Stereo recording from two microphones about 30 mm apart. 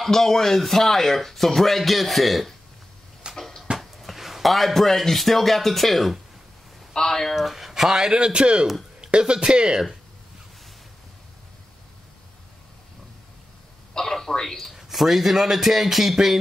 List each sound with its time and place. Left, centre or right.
0.0 s speech: centre
3.3 s cupboard open or close: centre
4.0 s speech: centre
6.9 s speech: centre
7.3 s speech: centre
8.1 s speech: right
13.9 s a sound: centre
14.9 s a man's voice: centre